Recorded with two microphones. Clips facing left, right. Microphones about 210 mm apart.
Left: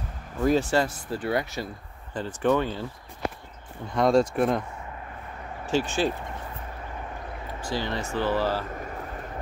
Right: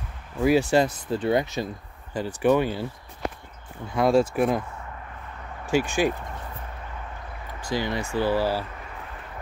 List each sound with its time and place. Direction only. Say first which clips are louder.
0.4 s speech: right 3 dB; 10° right (ahead or behind)
3.9 s speech: right 1 dB; 5° right (ahead or behind)
5.7 s speech: right 2 dB; 15° right (ahead or behind)
7.6 s speech: right 3 dB; 15° right (ahead or behind)
8.7 s a sound: left 5 dB; 40° left (ahead or behind)